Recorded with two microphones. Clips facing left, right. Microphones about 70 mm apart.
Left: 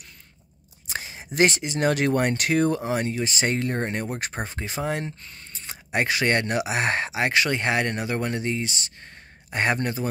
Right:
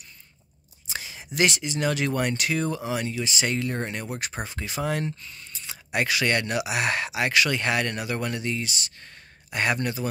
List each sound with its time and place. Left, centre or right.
0.9 s speech: left
5.2 s speech: left